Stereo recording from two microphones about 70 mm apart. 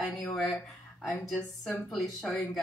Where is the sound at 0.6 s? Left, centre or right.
Centre.